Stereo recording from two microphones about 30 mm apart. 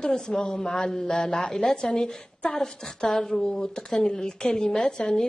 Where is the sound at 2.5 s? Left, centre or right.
Centre.